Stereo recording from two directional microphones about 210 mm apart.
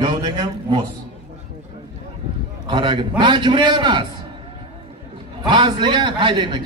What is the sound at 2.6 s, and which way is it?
A man's voice, 20° right (ahead or behind).